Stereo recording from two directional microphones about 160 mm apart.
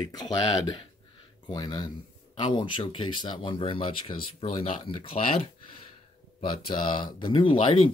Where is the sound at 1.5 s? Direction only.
25° left (ahead or behind).